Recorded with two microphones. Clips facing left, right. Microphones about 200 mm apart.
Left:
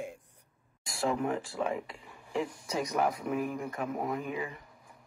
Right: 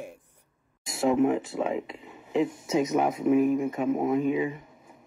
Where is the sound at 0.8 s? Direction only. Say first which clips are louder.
Right 8 dB; 20° right (ahead or behind).